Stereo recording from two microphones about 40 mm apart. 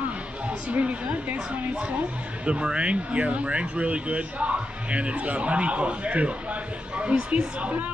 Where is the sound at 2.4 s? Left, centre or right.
Right.